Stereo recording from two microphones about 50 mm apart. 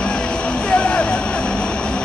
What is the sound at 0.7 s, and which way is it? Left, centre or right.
Vehicle, left.